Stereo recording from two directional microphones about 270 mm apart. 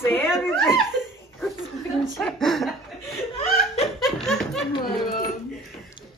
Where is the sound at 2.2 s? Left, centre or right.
Centre.